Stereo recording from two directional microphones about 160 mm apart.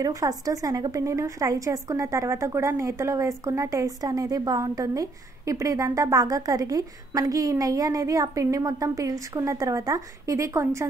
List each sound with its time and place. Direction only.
0.0 s a woman's voice: 20° right (ahead or behind)